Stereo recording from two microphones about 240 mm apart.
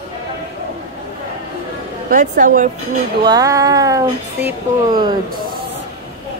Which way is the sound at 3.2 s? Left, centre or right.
Centre.